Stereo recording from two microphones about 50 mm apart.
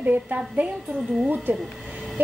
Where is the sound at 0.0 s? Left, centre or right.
Right.